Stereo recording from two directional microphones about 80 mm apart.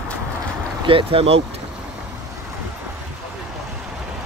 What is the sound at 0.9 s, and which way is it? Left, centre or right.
Speech, right.